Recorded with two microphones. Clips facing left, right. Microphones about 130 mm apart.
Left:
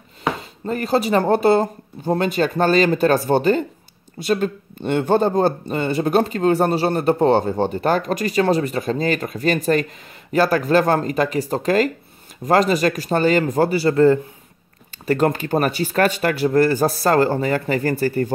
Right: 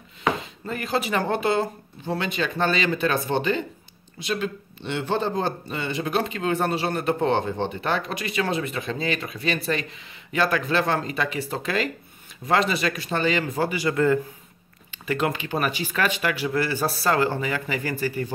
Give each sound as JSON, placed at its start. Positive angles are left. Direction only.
{"t": 0.4, "sound": "speech", "side_deg": 40}